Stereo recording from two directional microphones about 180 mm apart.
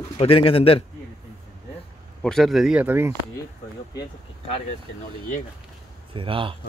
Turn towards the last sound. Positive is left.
turn(degrees=-30)  # may be behind; listen again after turning